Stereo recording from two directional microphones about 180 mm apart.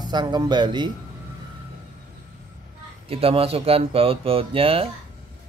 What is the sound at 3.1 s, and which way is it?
A man's voice, 30° right (ahead or behind).